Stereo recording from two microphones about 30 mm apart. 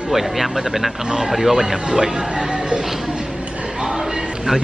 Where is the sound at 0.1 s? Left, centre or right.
Centre.